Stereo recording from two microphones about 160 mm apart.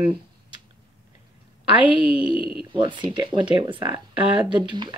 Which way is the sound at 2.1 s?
5° right (ahead or behind).